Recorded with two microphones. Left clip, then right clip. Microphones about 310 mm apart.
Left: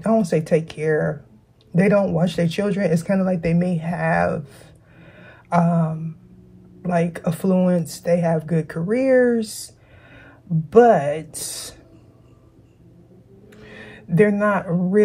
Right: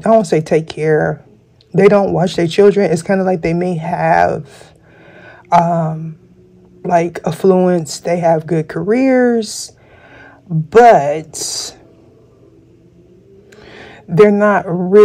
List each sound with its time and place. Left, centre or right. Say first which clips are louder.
0.0 s speech: right 9 dB; right
11.0 s speech: right 8 dB; right
13.6 s speech: right 4 dB; right